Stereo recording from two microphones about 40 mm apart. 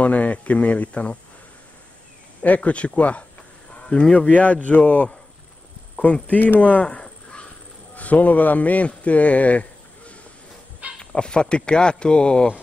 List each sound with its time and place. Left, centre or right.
0.0 s speech: left
2.4 s speech: left
6.2 s speech: left
11.0 s speech: left